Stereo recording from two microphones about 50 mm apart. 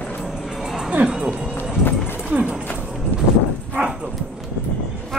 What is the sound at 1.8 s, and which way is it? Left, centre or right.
Run, left.